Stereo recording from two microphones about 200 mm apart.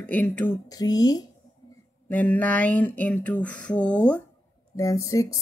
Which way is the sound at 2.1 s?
10° left (ahead or behind).